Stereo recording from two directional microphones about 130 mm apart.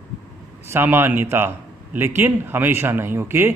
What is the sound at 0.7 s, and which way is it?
A man's voice, 20° right (ahead or behind).